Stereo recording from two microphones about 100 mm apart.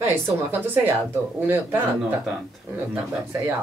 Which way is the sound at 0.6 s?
20° right (ahead or behind).